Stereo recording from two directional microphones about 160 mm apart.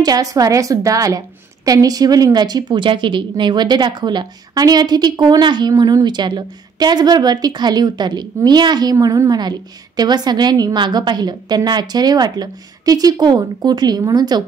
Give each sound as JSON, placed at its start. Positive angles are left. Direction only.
{"t": 0.0, "sound": "a woman's voice", "side_deg": -20}